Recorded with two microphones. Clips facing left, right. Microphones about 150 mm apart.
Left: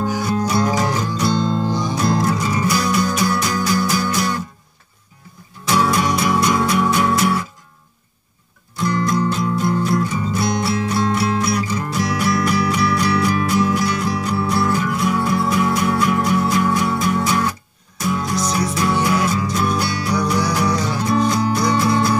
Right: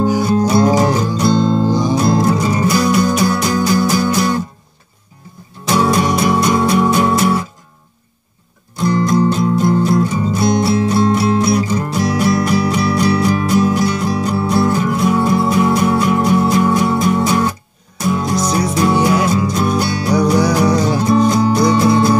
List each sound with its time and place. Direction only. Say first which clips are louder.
0.2 s music: right 6 dB; 35° right (ahead or behind)
2.6 s music: right 5 dB; 40° right (ahead or behind)
3.3 s music: right 4 dB; 30° right (ahead or behind)
5.7 s music: right 3 dB; 30° right (ahead or behind)
8.8 s music: right 5 dB; 25° right (ahead or behind)
18.4 s music: right 5 dB; 45° right (ahead or behind)
21.3 s music: right 5 dB; 25° right (ahead or behind)